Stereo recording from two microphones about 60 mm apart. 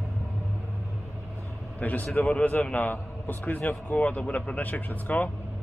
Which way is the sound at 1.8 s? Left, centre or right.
Left.